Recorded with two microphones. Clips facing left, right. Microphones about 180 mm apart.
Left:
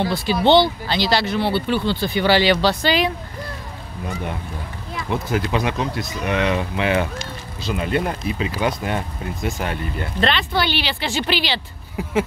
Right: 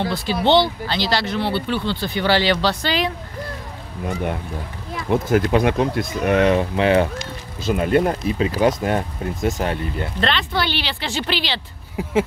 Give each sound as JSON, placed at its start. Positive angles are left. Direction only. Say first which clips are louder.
{"t": 0.5, "sound": "speech", "louder": "left 2 dB", "side_deg": 15}
{"t": 4.1, "sound": "speech", "louder": "right 4 dB", "side_deg": -55}
{"t": 7.6, "sound": "speech", "louder": "right 5 dB", "side_deg": -50}
{"t": 10.2, "sound": "speech", "louder": "left 2 dB", "side_deg": 10}